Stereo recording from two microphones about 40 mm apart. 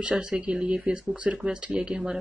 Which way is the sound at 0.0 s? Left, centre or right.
Right.